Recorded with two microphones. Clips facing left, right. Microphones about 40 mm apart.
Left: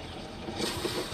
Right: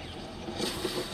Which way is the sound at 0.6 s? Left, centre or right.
Centre.